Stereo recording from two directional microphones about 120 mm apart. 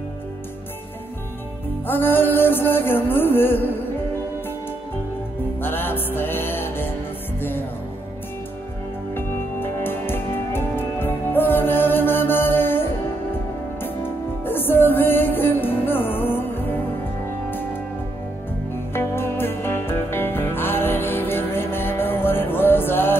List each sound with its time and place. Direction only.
1.9 s music: 15° left (ahead or behind)
5.6 s music: 15° left (ahead or behind)
9.1 s music: 20° left (ahead or behind)
13.8 s music: 15° left (ahead or behind)
18.9 s music: 20° left (ahead or behind)